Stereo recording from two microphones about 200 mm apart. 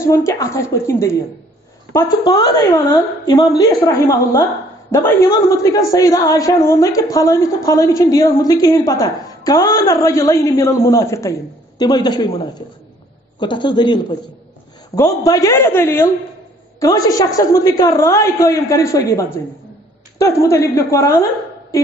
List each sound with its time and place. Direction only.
0.0 s a woman's voice: 15° left (ahead or behind)
13.4 s a woman's voice: 25° left (ahead or behind)